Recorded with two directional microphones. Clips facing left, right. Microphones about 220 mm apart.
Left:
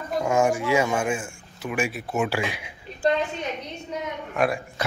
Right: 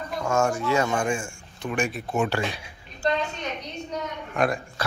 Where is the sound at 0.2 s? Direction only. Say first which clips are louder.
Left 2 dB; 15° left (ahead or behind).